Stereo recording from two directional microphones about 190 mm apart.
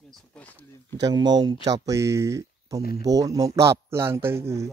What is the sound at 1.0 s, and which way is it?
Speech, 20° right (ahead or behind).